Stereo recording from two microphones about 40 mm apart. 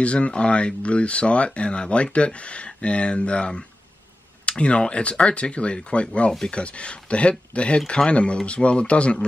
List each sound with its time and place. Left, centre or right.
0.0 s speech: left